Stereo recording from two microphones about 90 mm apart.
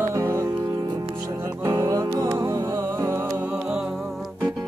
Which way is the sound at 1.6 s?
30° right (ahead or behind).